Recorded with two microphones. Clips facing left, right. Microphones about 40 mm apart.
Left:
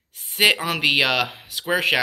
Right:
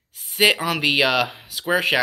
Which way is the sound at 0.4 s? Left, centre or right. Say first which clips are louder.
Even; centre.